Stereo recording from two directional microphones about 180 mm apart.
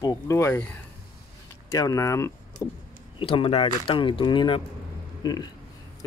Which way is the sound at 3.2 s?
30° left (ahead or behind).